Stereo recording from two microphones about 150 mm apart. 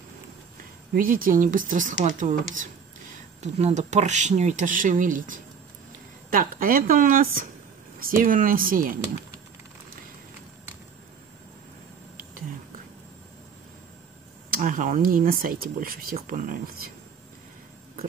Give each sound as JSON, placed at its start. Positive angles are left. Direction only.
{"t": 0.9, "sound": "speech", "side_deg": -70}
{"t": 14.5, "sound": "speech", "side_deg": -60}